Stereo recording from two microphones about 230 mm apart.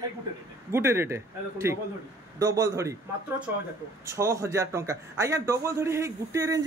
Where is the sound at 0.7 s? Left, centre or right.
Centre.